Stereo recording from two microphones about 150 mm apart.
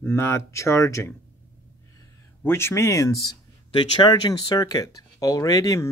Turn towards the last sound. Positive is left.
turn(degrees=20)  # may be behind; listen again after turning